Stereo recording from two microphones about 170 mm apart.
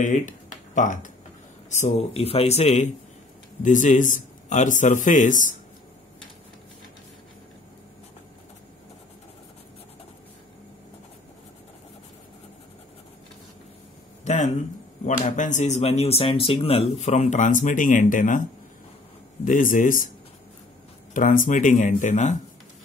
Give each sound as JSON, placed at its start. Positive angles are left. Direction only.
{"t": 0.0, "sound": "speech", "side_deg": 50}
{"t": 14.2, "sound": "a sound", "side_deg": 45}
{"t": 15.0, "sound": "speech", "side_deg": 45}
{"t": 19.4, "sound": "speech", "side_deg": 50}
{"t": 21.1, "sound": "speech", "side_deg": 50}